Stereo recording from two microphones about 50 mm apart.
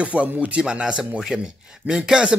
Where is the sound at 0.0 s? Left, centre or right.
Right.